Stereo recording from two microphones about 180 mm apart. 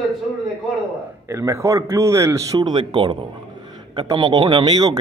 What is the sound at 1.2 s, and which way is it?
Speech, 15° right (ahead or behind).